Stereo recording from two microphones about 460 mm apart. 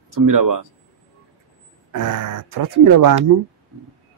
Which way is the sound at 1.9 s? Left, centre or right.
Right.